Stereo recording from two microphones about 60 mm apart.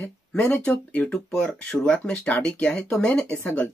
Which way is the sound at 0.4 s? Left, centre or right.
Left.